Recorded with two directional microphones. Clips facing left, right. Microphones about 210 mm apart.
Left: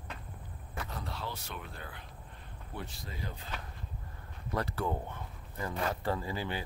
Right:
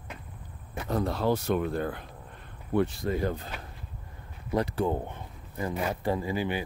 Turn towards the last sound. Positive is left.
turn(degrees=-15)  # may be behind; listen again after turning